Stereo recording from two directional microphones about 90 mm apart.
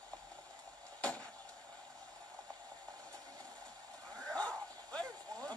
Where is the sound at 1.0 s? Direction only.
15° left (ahead or behind).